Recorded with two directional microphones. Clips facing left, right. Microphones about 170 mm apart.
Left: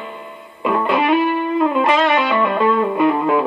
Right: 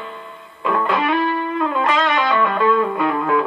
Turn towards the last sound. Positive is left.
turn(degrees=20)  # may be behind; listen again after turning